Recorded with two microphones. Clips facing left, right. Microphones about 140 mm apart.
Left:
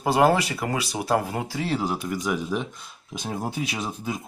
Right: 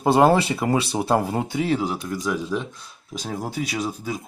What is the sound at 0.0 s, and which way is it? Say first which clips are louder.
Speech: right 3 dB; 25° right (ahead or behind).